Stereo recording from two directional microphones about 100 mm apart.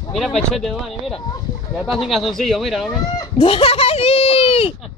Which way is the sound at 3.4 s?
70° left (ahead or behind).